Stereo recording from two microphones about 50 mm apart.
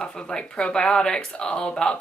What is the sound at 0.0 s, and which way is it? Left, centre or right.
Speech, centre.